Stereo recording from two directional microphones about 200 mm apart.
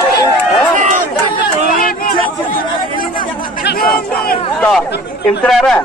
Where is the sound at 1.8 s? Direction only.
45° left (ahead or behind).